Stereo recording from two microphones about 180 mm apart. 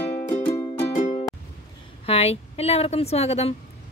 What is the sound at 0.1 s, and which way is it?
Music, 35° left (ahead or behind).